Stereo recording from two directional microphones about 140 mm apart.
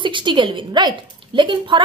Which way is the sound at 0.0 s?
35° right (ahead or behind).